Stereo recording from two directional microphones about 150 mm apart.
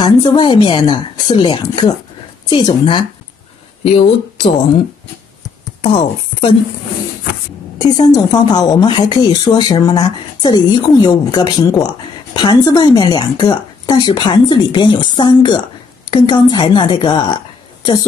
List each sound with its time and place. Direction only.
0.0 s speech: 30° left (ahead or behind)
5.8 s speech: 40° left (ahead or behind)
8.0 s speech: 25° left (ahead or behind)